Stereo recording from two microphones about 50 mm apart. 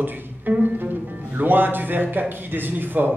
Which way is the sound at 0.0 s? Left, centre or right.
Right.